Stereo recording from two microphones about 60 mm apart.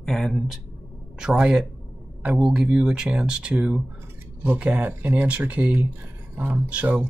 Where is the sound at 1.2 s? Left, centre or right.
Centre.